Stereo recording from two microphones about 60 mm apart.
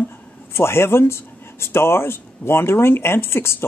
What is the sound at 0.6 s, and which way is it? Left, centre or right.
Speech, left.